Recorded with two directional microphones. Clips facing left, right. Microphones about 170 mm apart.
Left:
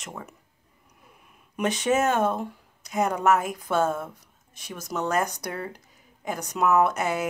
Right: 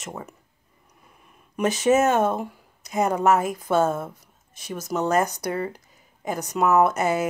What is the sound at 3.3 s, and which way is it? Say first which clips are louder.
Speech: right 2 dB; 40° right (ahead or behind).